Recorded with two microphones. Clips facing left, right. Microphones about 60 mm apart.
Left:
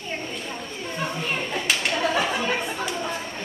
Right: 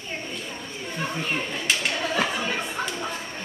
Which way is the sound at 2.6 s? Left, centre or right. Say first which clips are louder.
Left 1 dB; centre.